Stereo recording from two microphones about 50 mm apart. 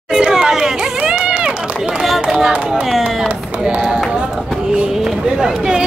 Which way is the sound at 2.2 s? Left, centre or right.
Centre.